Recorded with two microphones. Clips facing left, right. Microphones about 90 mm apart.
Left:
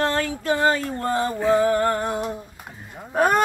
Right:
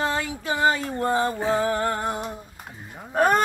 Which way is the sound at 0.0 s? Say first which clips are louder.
Left 3 dB; 10° right (ahead or behind).